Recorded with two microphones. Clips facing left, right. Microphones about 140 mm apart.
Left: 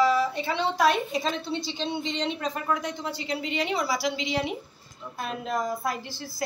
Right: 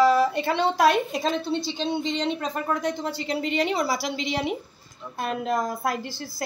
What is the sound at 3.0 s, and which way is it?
Speech, 45° right (ahead or behind).